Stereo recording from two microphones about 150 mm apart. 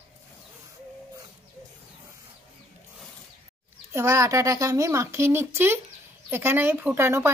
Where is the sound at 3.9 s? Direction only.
20° right (ahead or behind).